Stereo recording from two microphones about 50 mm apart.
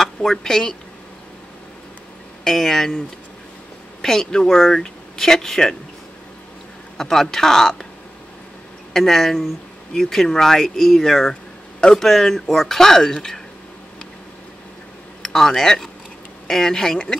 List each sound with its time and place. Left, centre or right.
0.0 s a woman's voice: centre
2.4 s speech: centre
4.0 s speech: centre
7.0 s speech: centre
8.9 s speech: centre
15.2 s speech: centre